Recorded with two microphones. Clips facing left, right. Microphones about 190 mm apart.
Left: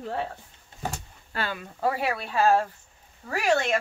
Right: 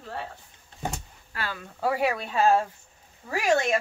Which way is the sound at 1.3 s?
25° left (ahead or behind).